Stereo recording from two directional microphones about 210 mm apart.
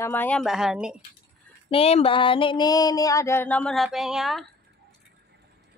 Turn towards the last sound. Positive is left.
turn(degrees=0)  # may be behind; listen again after turning